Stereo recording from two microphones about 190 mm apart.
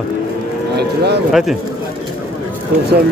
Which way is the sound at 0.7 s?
60° right (ahead or behind).